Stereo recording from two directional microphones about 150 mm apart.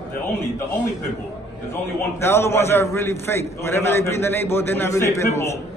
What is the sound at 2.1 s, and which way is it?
A man's voice, 15° left (ahead or behind).